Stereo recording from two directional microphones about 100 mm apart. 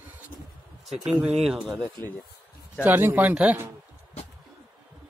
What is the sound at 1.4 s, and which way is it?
Speech, centre (ahead or behind).